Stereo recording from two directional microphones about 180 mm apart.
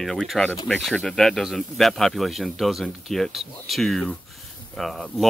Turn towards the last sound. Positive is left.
turn(degrees=0)  # may be behind; listen again after turning